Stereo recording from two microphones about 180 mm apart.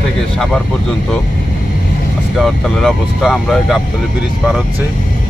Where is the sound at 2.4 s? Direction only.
Centre (ahead or behind).